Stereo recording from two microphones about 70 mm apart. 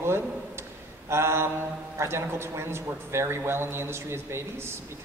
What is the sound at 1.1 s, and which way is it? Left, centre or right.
A man's voice, right.